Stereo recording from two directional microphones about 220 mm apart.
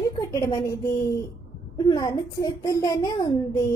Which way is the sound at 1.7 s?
15° left (ahead or behind).